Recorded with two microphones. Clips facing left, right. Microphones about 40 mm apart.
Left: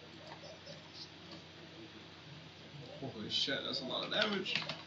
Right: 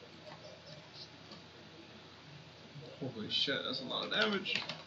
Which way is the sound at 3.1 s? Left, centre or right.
Centre.